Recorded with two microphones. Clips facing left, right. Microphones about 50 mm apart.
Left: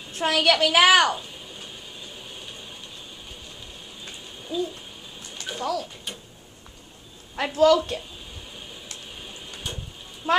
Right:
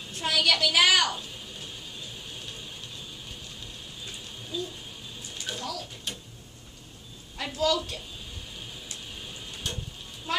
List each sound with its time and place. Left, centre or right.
0.1 s a woman's voice: left
1.1 s a sound: centre
4.5 s speech: centre
5.3 s a sound: centre
6.1 s tick-tock: centre
7.3 s a woman's voice: left
9.2 s printer: centre
10.3 s speech: centre